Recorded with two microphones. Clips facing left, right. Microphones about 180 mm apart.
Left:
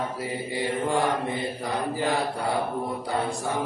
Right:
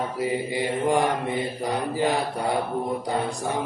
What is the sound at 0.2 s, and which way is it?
Mantra, 15° right (ahead or behind).